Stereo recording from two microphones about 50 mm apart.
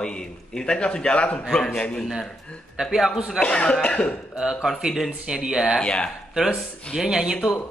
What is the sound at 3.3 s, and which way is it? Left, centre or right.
Speech, left.